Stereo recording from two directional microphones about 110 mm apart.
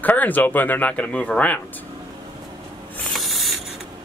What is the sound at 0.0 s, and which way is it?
Speech, 15° left (ahead or behind).